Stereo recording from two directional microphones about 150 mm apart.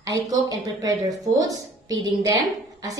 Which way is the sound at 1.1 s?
25° right (ahead or behind).